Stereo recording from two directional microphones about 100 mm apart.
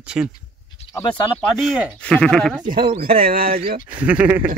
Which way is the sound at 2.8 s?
65° right (ahead or behind).